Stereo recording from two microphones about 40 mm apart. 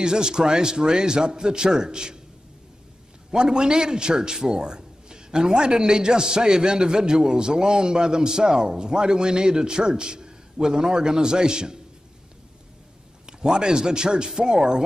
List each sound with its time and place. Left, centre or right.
0.0 s a man's voice: centre
3.3 s a man's voice: right
13.3 s a man's voice: centre